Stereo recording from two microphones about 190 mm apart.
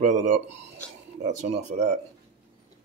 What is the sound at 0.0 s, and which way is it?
Speech, 40° right (ahead or behind).